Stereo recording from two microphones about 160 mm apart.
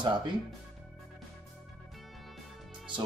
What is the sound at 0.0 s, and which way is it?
Speech, 30° right (ahead or behind).